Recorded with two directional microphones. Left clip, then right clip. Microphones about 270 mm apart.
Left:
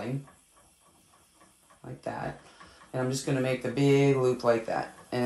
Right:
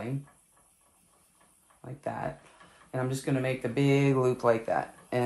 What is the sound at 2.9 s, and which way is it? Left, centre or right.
Speech, right.